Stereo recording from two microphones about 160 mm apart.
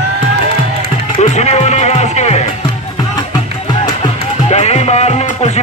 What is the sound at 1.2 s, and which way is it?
Music, 45° left (ahead or behind).